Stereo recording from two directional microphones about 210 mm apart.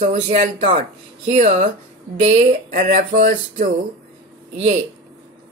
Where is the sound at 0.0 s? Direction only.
35° right (ahead or behind).